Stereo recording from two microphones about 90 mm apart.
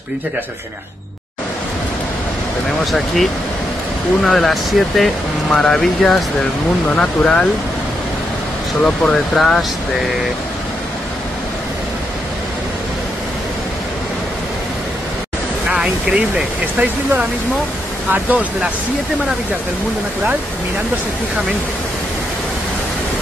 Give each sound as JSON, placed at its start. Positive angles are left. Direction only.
{"t": 4.2, "sound": "speech", "side_deg": 5}
{"t": 8.8, "sound": "speech", "side_deg": 10}
{"t": 15.7, "sound": "speech", "side_deg": -10}